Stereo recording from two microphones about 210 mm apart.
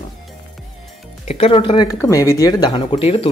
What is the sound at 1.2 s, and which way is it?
Speech, 30° left (ahead or behind).